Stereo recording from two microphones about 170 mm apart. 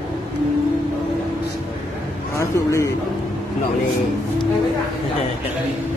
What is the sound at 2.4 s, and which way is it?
Speech, 15° left (ahead or behind).